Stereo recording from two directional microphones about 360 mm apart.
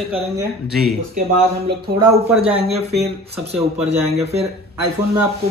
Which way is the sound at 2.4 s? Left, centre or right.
Centre.